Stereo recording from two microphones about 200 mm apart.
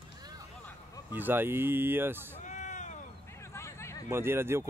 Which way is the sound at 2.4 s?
35° left (ahead or behind).